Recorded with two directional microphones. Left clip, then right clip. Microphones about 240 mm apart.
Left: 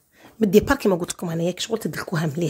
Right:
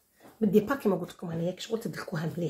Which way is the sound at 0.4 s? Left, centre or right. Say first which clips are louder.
Left 8 dB; left.